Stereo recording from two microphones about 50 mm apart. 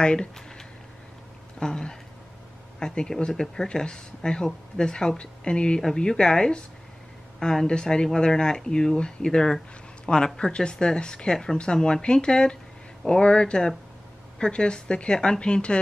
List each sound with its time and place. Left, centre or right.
0.0 s a woman's voice: centre
7.6 s a woman's voice: centre